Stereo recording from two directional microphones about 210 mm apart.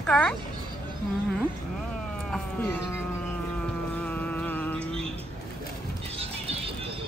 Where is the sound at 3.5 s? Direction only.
5° left (ahead or behind).